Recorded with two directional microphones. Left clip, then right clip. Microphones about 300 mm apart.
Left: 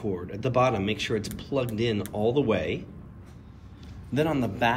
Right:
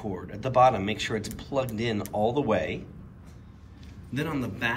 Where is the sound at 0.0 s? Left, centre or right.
Centre.